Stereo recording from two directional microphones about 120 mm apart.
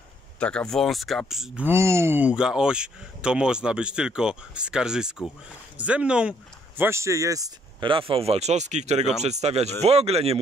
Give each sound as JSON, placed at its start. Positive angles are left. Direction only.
{"t": 0.4, "sound": "speech", "side_deg": 10}
{"t": 1.6, "sound": "speech", "side_deg": -20}
{"t": 6.8, "sound": "speech", "side_deg": -25}
{"t": 7.8, "sound": "speech", "side_deg": -45}